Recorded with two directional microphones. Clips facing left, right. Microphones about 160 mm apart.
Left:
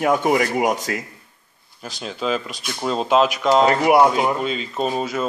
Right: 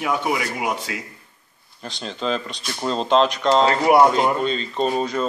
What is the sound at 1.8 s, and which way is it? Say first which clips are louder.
Speech: left 1 dB; 5° left (ahead or behind).